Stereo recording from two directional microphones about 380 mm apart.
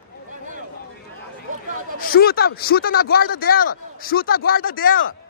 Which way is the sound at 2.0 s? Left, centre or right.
Left.